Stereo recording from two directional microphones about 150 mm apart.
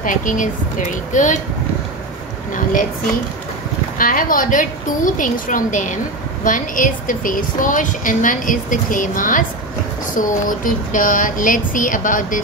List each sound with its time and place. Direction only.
0.0 s a woman's voice: 60° left (ahead or behind)
2.5 s a woman's voice: 65° left (ahead or behind)
4.0 s a woman's voice: 65° left (ahead or behind)